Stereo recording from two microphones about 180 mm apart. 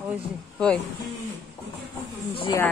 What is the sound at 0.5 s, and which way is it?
Speech, 5° left (ahead or behind).